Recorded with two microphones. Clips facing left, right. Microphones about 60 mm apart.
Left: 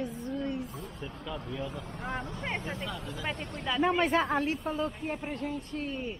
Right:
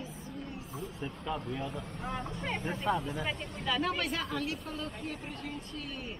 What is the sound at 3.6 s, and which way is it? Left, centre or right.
Speech, centre.